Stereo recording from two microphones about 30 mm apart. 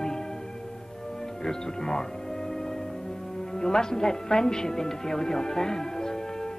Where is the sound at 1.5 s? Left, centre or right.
Left.